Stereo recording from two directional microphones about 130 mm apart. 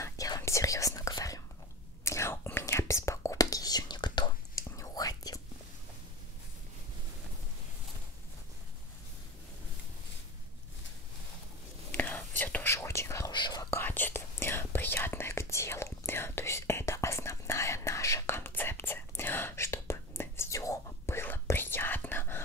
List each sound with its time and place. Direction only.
0.0 s whispering: 25° left (ahead or behind)
4.6 s whispering: 25° left (ahead or behind)
11.9 s whispering: 15° left (ahead or behind)
13.3 s whispering: 35° left (ahead or behind)
13.8 s whispering: 15° left (ahead or behind)